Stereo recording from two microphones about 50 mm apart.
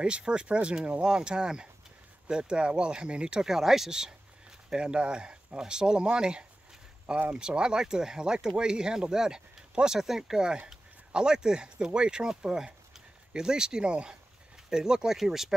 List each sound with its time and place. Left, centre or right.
0.0 s speech: centre
3.4 s speech: centre